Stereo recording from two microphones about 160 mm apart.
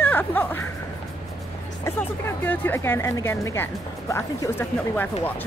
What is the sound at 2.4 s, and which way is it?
Speech, 10° left (ahead or behind).